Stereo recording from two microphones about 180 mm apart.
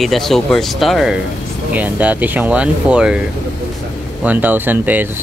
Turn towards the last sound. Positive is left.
turn(degrees=-10)  # may be behind; listen again after turning